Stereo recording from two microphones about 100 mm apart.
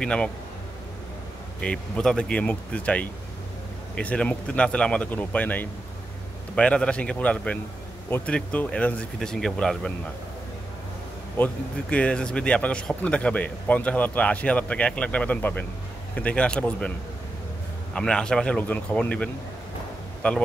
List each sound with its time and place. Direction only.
0.0 s speech: 10° left (ahead or behind)
1.6 s speech: 10° left (ahead or behind)
11.3 s speech: 15° left (ahead or behind)
17.9 s speech: 10° left (ahead or behind)